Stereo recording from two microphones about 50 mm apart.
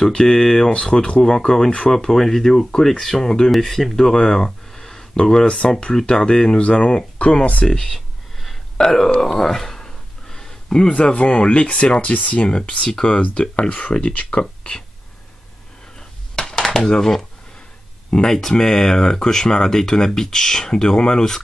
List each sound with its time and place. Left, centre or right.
0.0 s speech: centre
3.5 s speech: centre
7.9 s a sound: centre
8.7 s speech: centre
9.2 s a sound: centre
10.9 s speech: left
12.4 s speech: centre
16.3 s a sound: centre
17.0 s speech: centre